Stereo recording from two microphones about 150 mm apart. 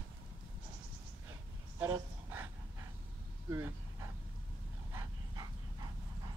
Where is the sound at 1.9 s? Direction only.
15° right (ahead or behind).